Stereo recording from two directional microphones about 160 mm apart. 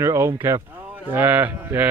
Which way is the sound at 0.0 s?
15° right (ahead or behind).